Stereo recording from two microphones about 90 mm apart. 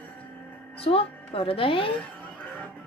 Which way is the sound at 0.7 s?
90° left.